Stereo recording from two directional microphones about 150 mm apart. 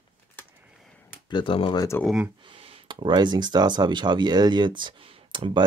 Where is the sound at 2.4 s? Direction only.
40° right (ahead or behind).